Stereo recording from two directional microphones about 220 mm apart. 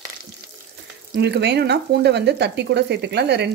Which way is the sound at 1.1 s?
50° right (ahead or behind).